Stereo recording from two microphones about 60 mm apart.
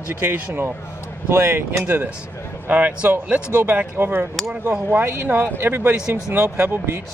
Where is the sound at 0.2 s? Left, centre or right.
Right.